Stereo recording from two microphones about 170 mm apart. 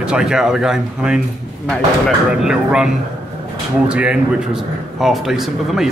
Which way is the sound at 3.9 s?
5° right (ahead or behind).